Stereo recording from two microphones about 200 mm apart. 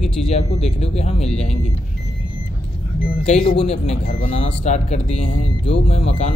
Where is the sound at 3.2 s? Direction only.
35° left (ahead or behind).